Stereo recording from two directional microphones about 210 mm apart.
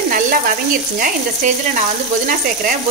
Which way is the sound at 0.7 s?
40° right (ahead or behind).